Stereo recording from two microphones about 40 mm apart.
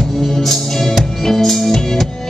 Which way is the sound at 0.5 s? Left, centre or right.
Centre.